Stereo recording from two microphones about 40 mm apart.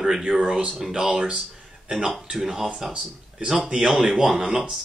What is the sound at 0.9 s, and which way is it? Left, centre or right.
Speech, right.